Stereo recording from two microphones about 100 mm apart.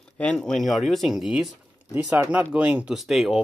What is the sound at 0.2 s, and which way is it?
Speech, 5° left (ahead or behind).